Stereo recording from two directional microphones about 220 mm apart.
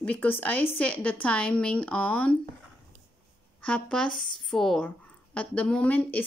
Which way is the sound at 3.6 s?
5° left (ahead or behind).